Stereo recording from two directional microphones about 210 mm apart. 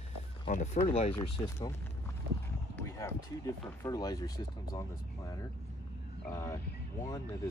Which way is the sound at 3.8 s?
20° left (ahead or behind).